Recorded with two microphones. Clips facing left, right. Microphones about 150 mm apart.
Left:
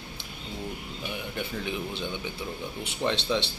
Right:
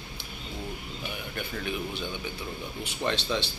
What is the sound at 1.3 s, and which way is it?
Speech, 20° left (ahead or behind).